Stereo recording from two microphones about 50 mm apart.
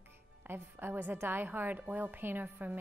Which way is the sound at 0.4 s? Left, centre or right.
Right.